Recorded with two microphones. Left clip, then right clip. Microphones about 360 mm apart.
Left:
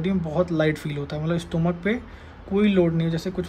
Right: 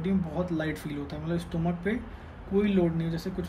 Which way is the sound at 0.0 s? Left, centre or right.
Centre.